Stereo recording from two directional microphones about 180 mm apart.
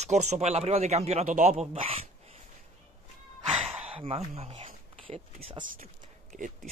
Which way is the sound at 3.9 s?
30° right (ahead or behind).